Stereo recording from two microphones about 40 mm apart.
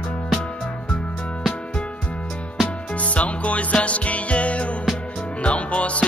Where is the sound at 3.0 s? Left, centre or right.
Left.